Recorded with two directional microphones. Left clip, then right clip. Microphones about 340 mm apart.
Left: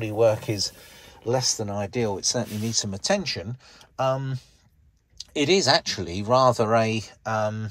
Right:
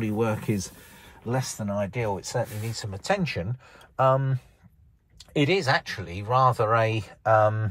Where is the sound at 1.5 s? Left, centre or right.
Centre.